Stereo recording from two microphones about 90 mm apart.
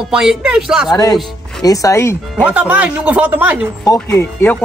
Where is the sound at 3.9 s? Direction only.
40° left (ahead or behind).